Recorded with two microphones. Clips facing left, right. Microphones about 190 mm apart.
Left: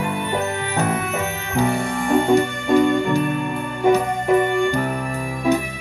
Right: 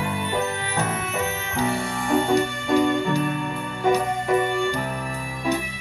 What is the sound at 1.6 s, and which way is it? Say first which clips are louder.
Music: left 5 dB; 50° left (ahead or behind).